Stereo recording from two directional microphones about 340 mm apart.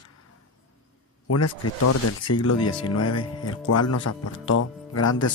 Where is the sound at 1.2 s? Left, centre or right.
Left.